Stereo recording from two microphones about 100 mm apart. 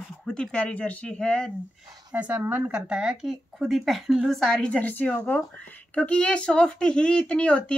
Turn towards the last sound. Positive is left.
turn(degrees=10)  # may be behind; listen again after turning